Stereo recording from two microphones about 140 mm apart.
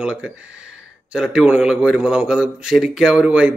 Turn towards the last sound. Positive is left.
turn(degrees=-5)  # may be behind; listen again after turning